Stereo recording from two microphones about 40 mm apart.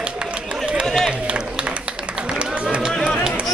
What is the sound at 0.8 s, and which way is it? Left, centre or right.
Run, centre.